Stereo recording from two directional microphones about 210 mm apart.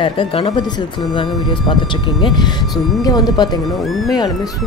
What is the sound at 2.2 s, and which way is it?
Speech, 20° left (ahead or behind).